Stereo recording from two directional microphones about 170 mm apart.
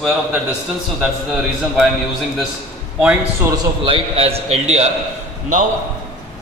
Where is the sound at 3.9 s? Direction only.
35° right (ahead or behind).